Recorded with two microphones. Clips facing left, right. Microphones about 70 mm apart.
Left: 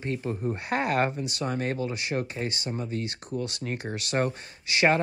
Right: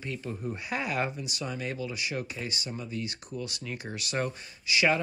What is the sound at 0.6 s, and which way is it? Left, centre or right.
Speech, left.